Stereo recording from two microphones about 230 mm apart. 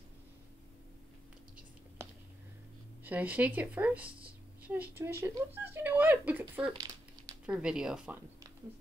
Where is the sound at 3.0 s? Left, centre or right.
Centre.